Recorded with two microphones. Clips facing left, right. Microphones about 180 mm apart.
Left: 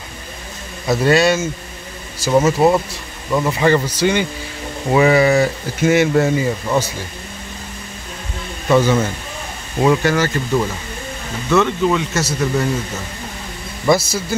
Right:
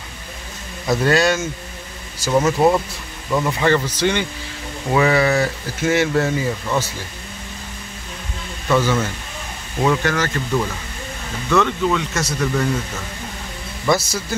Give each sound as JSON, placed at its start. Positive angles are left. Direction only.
{"t": 0.8, "sound": "speech", "side_deg": 10}
{"t": 8.6, "sound": "speech", "side_deg": 20}
{"t": 13.8, "sound": "speech", "side_deg": 10}